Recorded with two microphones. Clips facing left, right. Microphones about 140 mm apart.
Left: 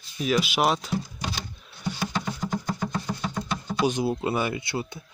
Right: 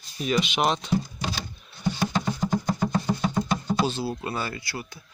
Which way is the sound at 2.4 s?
20° right (ahead or behind).